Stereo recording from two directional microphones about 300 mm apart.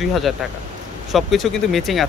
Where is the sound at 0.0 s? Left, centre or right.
Centre.